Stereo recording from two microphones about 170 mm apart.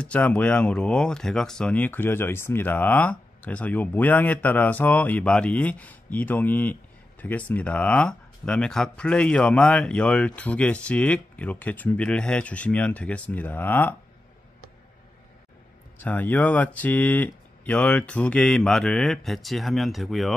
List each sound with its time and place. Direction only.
0.0 s speech: 5° left (ahead or behind)
16.0 s speech: 10° left (ahead or behind)